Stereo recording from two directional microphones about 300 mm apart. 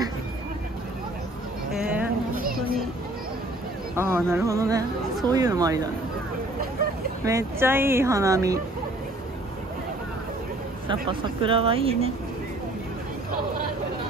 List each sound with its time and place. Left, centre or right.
2.3 s a sound: right
3.9 s speech: centre
7.2 s speech: centre
10.9 s speech: centre